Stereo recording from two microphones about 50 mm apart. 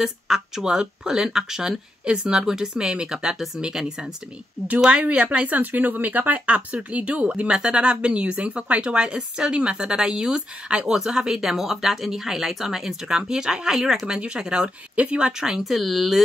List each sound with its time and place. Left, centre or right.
0.0 s speech: centre; by 5.6 s right
5.6 s speech: right; by 14.0 s centre
14.0 s speech: centre
15.6 s speech: centre